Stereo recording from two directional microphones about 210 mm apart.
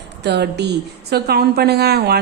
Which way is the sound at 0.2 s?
55° right (ahead or behind).